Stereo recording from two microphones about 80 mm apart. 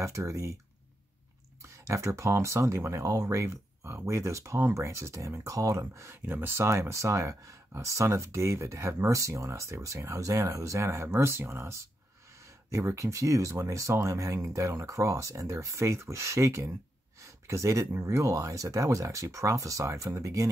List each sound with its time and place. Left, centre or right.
0.0 s speech: right
1.6 s speech: right
6.2 s speech: right
17.2 s a sound: right
18.0 s speech: right